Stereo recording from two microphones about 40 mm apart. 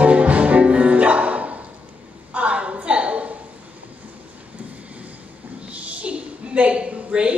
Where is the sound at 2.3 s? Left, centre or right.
Right.